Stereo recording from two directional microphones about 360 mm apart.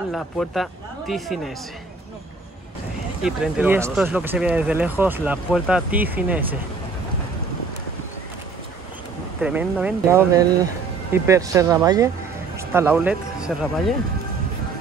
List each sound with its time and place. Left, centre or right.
0.1 s speech: centre
3.2 s speech: centre
9.4 s speech: centre